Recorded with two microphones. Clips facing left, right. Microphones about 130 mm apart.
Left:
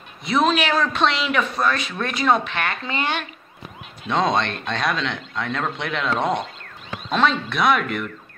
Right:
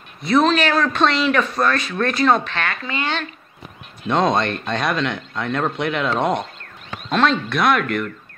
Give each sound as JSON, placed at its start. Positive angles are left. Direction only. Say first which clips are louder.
{"t": 0.2, "sound": "speech", "louder": "right 3 dB", "side_deg": 5}
{"t": 2.6, "sound": "speech", "louder": "even", "side_deg": 20}
{"t": 4.1, "sound": "speech", "louder": "right 3 dB", "side_deg": -5}